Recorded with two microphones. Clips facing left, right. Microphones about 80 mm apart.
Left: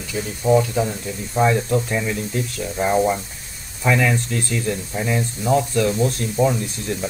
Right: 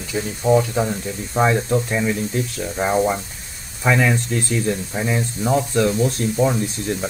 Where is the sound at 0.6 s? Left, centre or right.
Right.